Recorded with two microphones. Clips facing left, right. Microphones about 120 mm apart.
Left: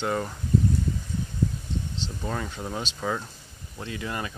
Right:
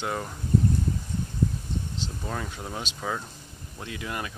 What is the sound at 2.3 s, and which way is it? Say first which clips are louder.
Speech: left 4 dB; 5° right (ahead or behind).